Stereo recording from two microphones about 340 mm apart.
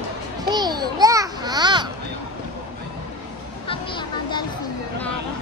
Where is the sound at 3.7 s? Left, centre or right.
Centre.